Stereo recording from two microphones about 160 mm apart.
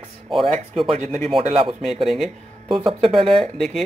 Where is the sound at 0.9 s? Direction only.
45° right (ahead or behind).